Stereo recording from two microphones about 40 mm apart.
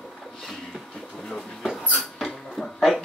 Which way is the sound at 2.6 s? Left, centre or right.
Centre.